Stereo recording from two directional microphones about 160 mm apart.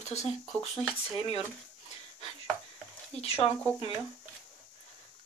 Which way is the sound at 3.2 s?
40° left (ahead or behind).